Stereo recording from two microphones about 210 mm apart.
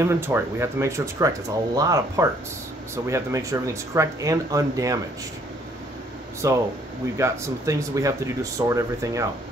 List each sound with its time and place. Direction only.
0.0 s speech: 10° right (ahead or behind)
6.4 s speech: 15° right (ahead or behind)